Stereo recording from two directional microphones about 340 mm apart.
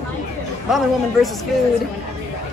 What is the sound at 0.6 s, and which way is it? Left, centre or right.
Speech, centre.